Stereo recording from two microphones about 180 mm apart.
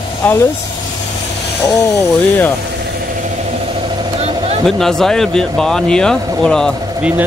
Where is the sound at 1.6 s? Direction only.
15° left (ahead or behind).